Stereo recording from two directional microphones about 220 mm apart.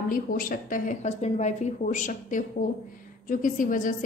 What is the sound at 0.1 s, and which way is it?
A woman's voice, 40° left (ahead or behind).